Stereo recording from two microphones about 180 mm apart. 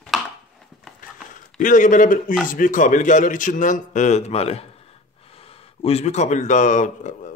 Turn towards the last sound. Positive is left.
turn(degrees=45)  # may be behind; listen again after turning